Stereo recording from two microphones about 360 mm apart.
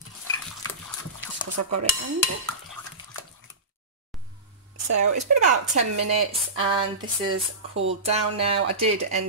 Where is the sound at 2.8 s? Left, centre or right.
Centre.